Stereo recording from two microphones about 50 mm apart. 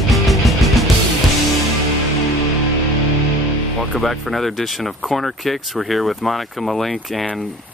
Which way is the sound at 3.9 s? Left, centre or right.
Centre.